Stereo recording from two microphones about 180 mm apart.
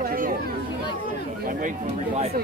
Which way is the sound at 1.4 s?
45° right (ahead or behind).